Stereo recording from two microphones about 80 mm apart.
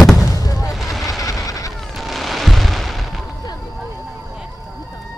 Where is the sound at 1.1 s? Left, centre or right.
Left.